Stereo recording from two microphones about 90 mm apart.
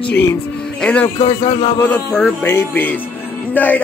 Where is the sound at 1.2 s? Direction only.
80° left.